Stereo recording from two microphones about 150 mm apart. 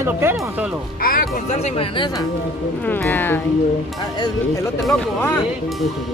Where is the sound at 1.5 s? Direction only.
45° left (ahead or behind).